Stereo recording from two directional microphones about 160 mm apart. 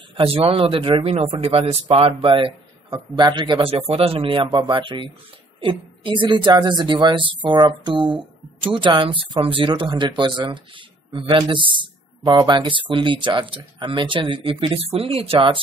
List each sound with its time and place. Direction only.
0.2 s a man's voice: 35° right (ahead or behind)